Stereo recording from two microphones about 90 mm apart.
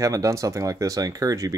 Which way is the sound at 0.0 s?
35° right (ahead or behind).